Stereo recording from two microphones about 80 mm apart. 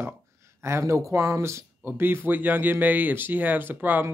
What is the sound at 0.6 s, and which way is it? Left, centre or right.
Speech, right.